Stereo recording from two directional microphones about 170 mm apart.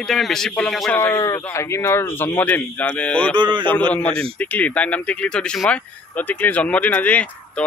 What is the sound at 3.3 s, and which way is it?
Speech, 30° right (ahead or behind).